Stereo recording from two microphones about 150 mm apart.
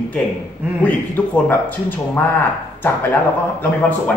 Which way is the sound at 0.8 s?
10° left (ahead or behind).